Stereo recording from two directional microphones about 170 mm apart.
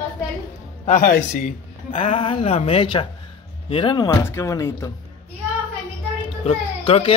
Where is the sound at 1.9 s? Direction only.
35° left (ahead or behind).